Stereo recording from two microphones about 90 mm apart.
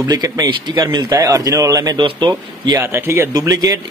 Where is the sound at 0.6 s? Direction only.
55° right (ahead or behind).